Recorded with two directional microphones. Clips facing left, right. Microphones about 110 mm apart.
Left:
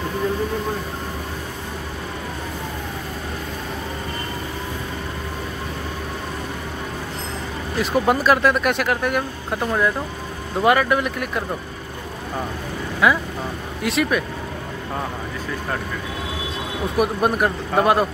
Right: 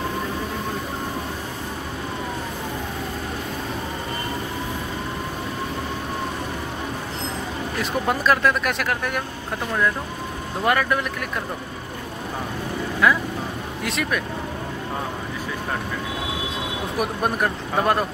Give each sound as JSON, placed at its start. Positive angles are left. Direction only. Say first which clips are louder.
{"t": 7.8, "sound": "speech", "louder": "left 5 dB", "side_deg": 5}
{"t": 10.6, "sound": "speech", "louder": "left 4 dB", "side_deg": 5}
{"t": 13.0, "sound": "speech", "louder": "left 2 dB", "side_deg": 5}
{"t": 17.0, "sound": "speech", "louder": "left 4 dB", "side_deg": 5}